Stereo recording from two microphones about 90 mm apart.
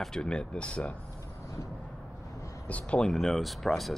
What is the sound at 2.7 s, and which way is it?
Speech, 15° left (ahead or behind).